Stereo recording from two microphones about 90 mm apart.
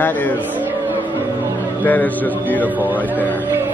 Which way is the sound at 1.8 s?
20° left (ahead or behind).